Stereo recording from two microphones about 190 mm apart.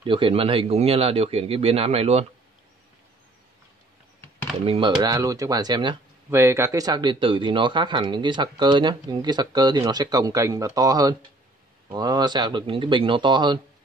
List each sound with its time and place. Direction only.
0.0 s a man's voice: 25° right (ahead or behind)
4.6 s speech: 25° right (ahead or behind)